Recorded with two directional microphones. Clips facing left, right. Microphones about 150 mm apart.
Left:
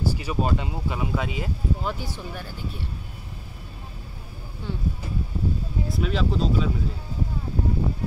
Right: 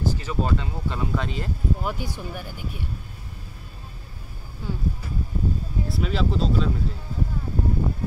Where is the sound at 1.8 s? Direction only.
10° right (ahead or behind).